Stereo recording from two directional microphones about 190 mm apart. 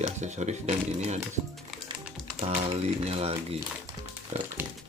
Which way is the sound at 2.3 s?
35° right (ahead or behind).